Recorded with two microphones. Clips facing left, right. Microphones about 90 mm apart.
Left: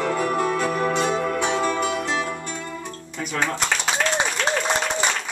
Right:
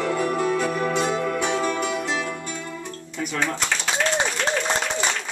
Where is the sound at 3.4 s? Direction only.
20° left (ahead or behind).